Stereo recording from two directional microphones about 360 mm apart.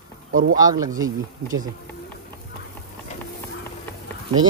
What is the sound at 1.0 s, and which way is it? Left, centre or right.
Speech, right.